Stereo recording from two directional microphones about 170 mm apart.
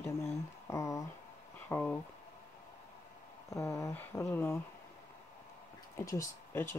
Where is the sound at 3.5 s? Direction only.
15° left (ahead or behind).